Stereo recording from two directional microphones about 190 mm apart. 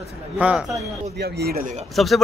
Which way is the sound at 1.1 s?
60° right (ahead or behind).